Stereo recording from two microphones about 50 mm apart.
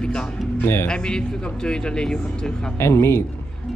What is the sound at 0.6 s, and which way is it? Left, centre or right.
Speech, left.